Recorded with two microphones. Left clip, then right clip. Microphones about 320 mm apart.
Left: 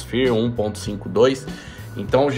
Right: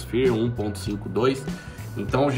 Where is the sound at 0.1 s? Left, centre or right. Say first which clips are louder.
Left 3 dB; left.